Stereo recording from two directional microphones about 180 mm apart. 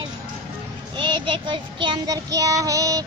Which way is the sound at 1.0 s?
25° right (ahead or behind).